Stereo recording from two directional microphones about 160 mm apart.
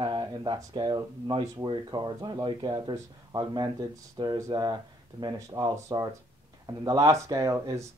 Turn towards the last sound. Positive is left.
turn(degrees=-20)  # may be behind; listen again after turning